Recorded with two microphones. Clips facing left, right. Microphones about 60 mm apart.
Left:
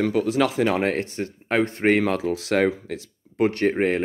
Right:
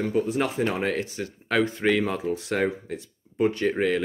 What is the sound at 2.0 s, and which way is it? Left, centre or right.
Speech, left.